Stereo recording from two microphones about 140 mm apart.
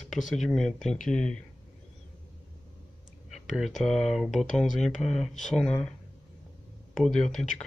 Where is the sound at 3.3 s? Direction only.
Centre (ahead or behind).